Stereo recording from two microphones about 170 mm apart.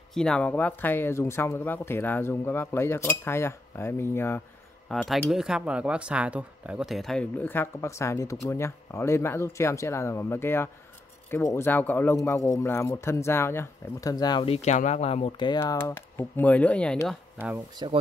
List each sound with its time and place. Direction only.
0.1 s a man's voice: 5° left (ahead or behind)
4.8 s a man's voice: centre (ahead or behind)
17.8 s speech: 30° right (ahead or behind)